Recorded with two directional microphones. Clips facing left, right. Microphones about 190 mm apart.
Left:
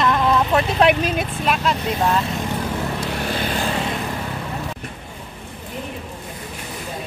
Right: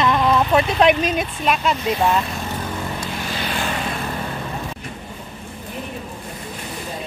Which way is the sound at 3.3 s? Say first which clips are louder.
Left 2 dB; 50° left (ahead or behind).